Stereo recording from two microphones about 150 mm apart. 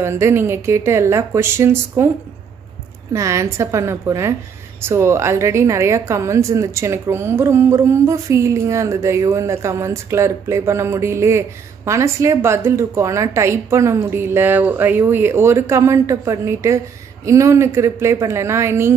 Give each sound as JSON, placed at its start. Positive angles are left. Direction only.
{"t": 0.0, "sound": "speech", "side_deg": -15}
{"t": 3.1, "sound": "a woman's voice", "side_deg": -20}